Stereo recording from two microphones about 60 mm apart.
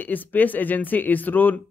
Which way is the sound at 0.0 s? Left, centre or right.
Left.